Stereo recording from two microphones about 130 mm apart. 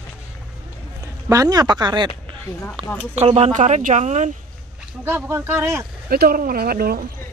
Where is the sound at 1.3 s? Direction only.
25° right (ahead or behind).